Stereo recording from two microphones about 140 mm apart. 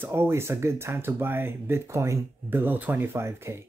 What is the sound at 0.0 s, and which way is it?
Speech, 15° right (ahead or behind).